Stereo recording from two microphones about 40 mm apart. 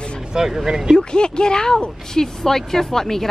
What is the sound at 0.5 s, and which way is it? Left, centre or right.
Speech, centre.